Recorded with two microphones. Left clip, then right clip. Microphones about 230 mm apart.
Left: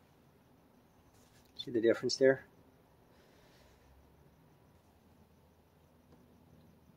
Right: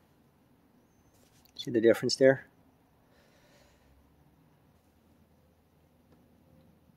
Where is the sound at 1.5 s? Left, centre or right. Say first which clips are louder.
Right 6 dB; right.